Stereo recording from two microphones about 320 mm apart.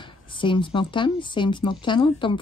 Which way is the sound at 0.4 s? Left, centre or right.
Centre.